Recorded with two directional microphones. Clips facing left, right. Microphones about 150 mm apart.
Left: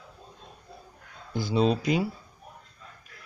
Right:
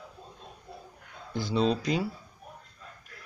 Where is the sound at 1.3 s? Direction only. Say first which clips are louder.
Left 2 dB; 10° left (ahead or behind).